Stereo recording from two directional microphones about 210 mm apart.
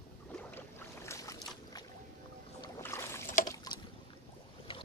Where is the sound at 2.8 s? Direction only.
10° left (ahead or behind).